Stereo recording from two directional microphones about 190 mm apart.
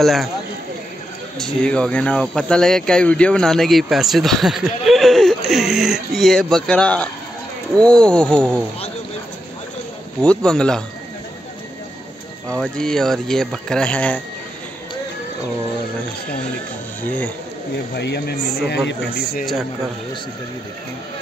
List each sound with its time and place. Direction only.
0.0 s speech: centre (ahead or behind)
1.4 s speech: 5° left (ahead or behind)
10.2 s speech: 5° left (ahead or behind)
12.4 s speech: 5° left (ahead or behind)
17.0 s speech: 10° left (ahead or behind)
17.9 s speech: 60° left (ahead or behind)